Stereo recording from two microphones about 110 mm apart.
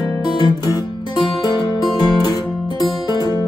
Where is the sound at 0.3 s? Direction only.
40° left (ahead or behind).